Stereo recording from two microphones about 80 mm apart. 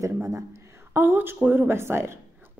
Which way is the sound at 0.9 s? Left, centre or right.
Right.